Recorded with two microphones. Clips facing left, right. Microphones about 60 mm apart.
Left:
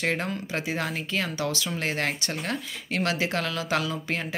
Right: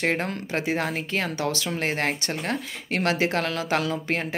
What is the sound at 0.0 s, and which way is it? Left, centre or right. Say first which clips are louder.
Speech: right 2 dB; right.